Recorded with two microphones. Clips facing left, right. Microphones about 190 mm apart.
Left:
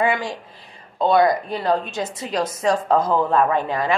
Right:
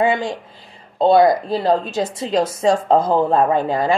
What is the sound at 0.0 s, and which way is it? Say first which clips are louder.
A woman's voice: right 3 dB; 25° right (ahead or behind).